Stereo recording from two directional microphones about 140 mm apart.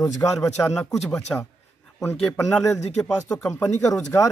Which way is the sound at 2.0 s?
20° left (ahead or behind).